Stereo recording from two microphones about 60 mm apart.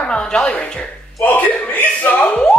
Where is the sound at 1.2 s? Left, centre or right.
Left.